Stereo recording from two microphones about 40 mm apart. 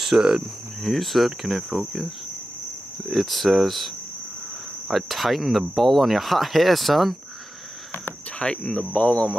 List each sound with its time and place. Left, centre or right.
0.1 s speech: right
0.8 s speech: centre
3.1 s speech: centre
8.4 s speech: left